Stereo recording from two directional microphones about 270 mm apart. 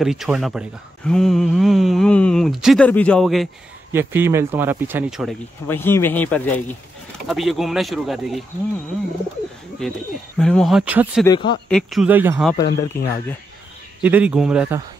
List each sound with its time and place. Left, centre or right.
0.0 s speech: centre
5.7 s speech: centre
9.8 s speech: centre
11.2 s speech: centre
11.7 s speech: centre
12.5 s speech: centre
14.0 s speech: centre